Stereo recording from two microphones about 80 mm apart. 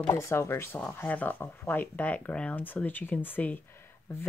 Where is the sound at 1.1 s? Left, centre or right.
Left.